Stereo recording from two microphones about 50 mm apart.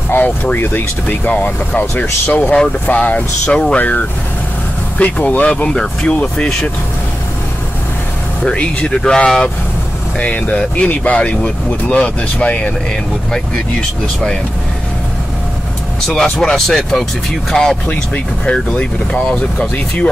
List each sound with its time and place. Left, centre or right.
0.1 s speech: left
2.2 s speech: left
2.9 s speech: left
3.4 s speech: centre
3.7 s speech: left
8.5 s speech: centre
13.3 s speech: centre
16.2 s speech: centre
17.8 s speech: left